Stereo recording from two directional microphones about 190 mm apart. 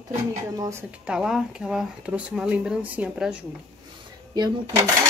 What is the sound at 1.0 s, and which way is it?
Speech, 5° right (ahead or behind).